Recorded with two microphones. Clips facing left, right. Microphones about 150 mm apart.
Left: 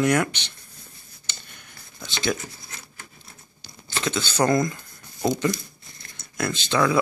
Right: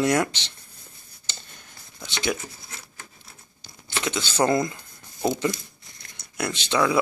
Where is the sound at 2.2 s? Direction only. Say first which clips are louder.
Left 1 dB; 10° right (ahead or behind).